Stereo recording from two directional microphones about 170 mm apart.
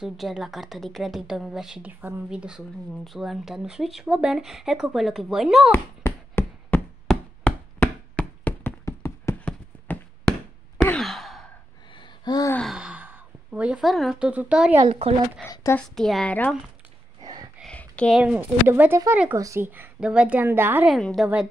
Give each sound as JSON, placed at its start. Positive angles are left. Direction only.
{"t": 0.0, "sound": "a woman's voice", "side_deg": 0}
{"t": 6.0, "sound": "a sound", "side_deg": 15}
{"t": 7.1, "sound": "chop", "side_deg": 10}
{"t": 10.9, "sound": "sigh", "side_deg": 0}
{"t": 11.9, "sound": "gasp", "side_deg": 25}
{"t": 12.5, "sound": "sigh", "side_deg": 0}
{"t": 14.9, "sound": "speech", "side_deg": -40}
{"t": 15.4, "sound": "a woman's voice", "side_deg": 15}
{"t": 15.9, "sound": "a woman's voice", "side_deg": 0}
{"t": 17.2, "sound": "a sound", "side_deg": -25}
{"t": 17.6, "sound": "a sound", "side_deg": 5}
{"t": 18.2, "sound": "a woman's voice", "side_deg": -10}
{"t": 20.9, "sound": "a woman's voice", "side_deg": 0}